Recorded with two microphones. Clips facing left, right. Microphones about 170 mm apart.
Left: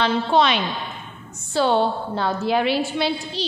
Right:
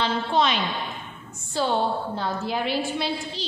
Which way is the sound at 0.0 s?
75° left (ahead or behind).